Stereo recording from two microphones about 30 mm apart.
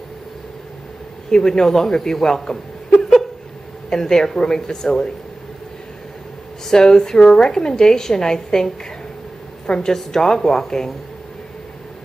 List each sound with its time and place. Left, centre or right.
1.3 s speech: centre
3.9 s a woman's voice: centre
6.7 s a woman's voice: centre